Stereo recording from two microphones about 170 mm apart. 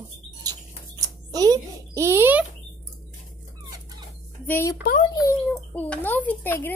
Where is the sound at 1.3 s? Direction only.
20° right (ahead or behind).